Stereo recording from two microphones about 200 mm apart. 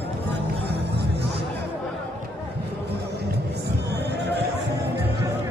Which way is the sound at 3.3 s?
55° right (ahead or behind).